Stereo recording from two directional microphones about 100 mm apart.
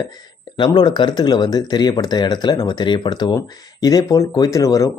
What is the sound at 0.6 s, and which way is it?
Speech, 45° left (ahead or behind).